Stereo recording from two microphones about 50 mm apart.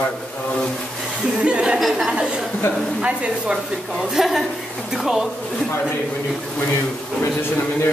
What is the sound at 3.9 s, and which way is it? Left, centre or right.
A woman's voice, centre.